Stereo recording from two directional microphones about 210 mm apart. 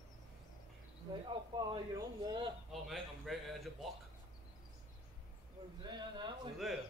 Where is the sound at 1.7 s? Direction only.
20° right (ahead or behind).